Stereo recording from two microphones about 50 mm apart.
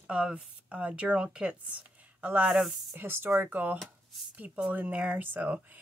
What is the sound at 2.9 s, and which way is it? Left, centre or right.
Speech, right.